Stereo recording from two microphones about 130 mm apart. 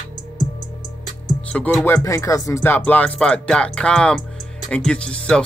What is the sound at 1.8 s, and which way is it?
Speech, 20° left (ahead or behind).